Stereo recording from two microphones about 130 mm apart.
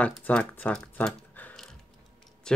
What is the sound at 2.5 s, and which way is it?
Speech, 5° left (ahead or behind).